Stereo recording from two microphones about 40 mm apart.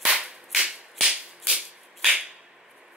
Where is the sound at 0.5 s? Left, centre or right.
Centre.